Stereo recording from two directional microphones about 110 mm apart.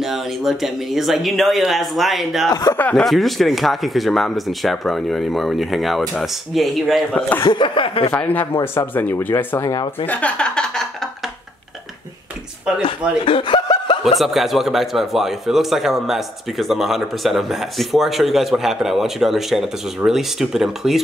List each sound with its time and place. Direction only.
0.0 s speech: centre (ahead or behind)
2.7 s speech: 15° left (ahead or behind)
3.1 s speech: centre (ahead or behind)
7.4 s speech: 45° left (ahead or behind)
8.1 s speech: 15° left (ahead or behind)
13.2 s chuckle: 50° left (ahead or behind)
14.0 s speech: centre (ahead or behind)